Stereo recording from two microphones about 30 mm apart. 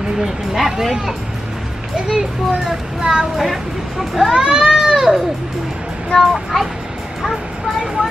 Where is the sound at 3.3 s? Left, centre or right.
Centre.